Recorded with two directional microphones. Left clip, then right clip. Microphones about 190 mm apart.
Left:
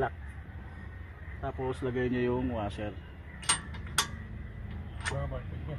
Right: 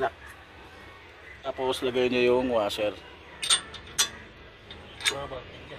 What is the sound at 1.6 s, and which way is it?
Speech, 45° right (ahead or behind).